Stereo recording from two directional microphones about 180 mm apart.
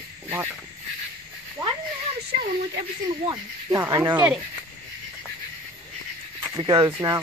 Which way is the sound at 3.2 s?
20° right (ahead or behind).